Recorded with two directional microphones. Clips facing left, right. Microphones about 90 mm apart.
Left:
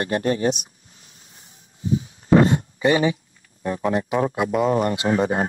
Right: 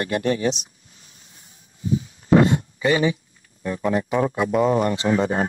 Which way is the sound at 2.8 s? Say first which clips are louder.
Left 1 dB; 25° left (ahead or behind).